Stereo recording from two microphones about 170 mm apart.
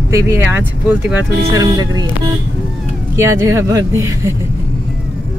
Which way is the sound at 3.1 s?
15° right (ahead or behind).